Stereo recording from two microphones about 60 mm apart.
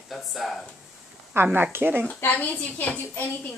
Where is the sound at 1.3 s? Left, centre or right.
Right.